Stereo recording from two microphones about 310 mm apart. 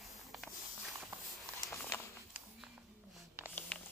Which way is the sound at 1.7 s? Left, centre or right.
Centre.